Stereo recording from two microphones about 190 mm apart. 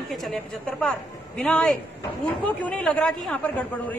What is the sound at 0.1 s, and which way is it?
A woman's voice, centre (ahead or behind).